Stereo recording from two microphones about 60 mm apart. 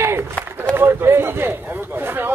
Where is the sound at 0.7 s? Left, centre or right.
Right.